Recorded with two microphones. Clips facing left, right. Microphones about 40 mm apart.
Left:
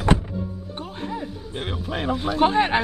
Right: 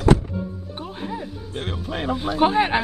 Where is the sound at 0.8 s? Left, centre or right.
Centre.